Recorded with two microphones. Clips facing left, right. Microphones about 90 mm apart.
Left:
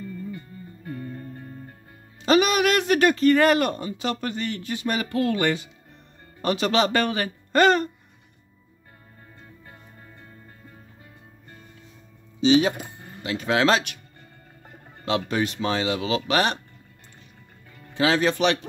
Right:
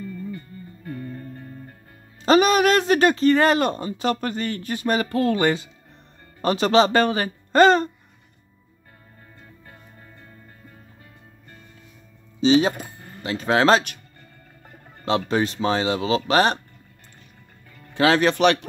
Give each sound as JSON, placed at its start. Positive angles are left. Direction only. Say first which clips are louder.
{"t": 0.8, "sound": "music", "louder": "right 1 dB", "side_deg": 10}
{"t": 2.2, "sound": "speech", "louder": "right 3 dB", "side_deg": -35}
{"t": 4.0, "sound": "speech", "louder": "right 4 dB", "side_deg": -45}
{"t": 12.4, "sound": "speech", "louder": "right 1 dB", "side_deg": -35}
{"t": 15.0, "sound": "speech", "louder": "right 3 dB", "side_deg": -35}
{"t": 17.9, "sound": "speech", "louder": "right 3 dB", "side_deg": -60}